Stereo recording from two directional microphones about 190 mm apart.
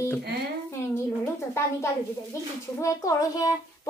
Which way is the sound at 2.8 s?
20° left (ahead or behind).